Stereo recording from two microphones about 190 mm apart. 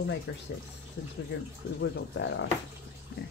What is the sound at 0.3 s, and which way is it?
Speech, 65° left (ahead or behind).